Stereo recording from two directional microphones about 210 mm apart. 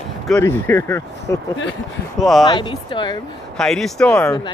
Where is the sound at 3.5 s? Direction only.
Centre (ahead or behind).